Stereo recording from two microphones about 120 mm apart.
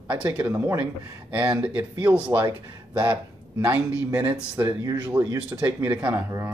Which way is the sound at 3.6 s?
15° right (ahead or behind).